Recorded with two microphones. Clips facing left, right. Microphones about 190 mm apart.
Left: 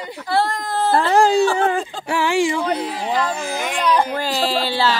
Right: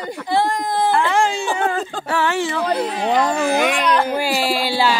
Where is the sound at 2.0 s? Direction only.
10° left (ahead or behind).